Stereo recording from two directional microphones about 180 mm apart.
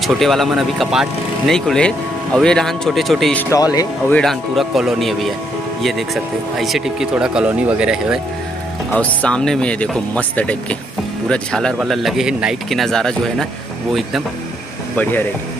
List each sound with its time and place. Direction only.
0.0 s speech: centre (ahead or behind)
3.4 s speech: 20° left (ahead or behind)
4.1 s speech: centre (ahead or behind)
8.9 s speech: 5° left (ahead or behind)
15.0 s speech: 10° left (ahead or behind)